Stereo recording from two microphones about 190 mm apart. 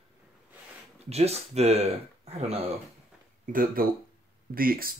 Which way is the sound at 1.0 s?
35° right (ahead or behind).